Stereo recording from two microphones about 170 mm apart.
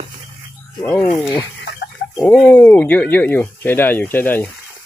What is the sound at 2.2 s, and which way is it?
Speech, 5° left (ahead or behind).